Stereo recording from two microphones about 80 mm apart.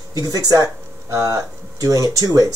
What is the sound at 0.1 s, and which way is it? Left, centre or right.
Speech, right.